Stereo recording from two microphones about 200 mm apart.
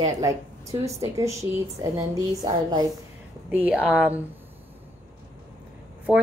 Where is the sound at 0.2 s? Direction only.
15° right (ahead or behind).